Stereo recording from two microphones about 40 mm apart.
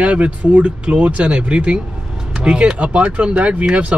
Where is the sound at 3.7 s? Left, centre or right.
Right.